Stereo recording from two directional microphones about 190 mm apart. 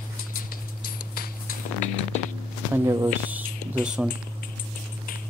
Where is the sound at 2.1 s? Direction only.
35° left (ahead or behind).